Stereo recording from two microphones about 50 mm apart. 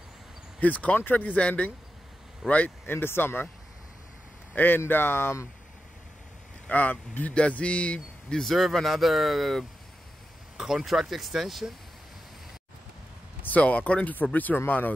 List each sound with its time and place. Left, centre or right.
0.6 s speech: left
2.9 s speech: left
4.6 s speech: left
6.7 s speech: left
8.3 s speech: centre
10.6 s speech: centre
13.5 s speech: left